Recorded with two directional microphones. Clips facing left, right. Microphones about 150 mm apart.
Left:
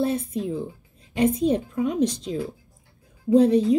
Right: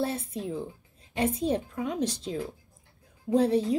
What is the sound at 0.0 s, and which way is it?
A child's voice, 15° left (ahead or behind).